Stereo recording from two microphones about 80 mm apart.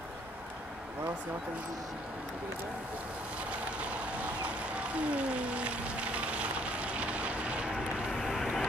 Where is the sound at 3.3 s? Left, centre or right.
Centre.